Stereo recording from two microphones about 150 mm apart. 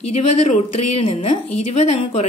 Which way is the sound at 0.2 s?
45° left (ahead or behind).